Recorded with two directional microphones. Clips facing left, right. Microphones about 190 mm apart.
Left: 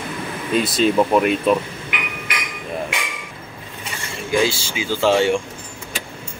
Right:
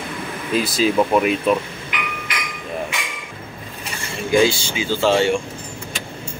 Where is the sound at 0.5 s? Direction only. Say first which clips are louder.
Left 1 dB; centre (ahead or behind).